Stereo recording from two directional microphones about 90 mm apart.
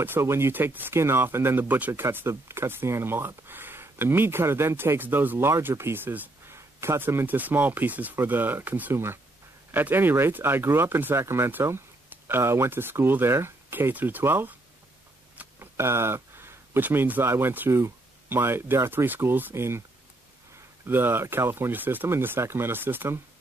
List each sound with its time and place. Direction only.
0.0 s speech: 25° right (ahead or behind)
20.8 s speech: 25° right (ahead or behind)